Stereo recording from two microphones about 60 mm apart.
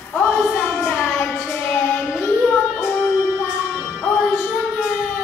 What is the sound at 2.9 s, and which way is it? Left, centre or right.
Music, left.